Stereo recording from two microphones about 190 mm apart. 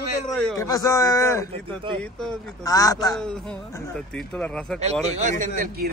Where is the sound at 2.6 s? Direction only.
20° left (ahead or behind).